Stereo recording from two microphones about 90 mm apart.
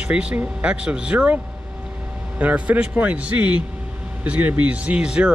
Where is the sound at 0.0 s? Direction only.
15° right (ahead or behind).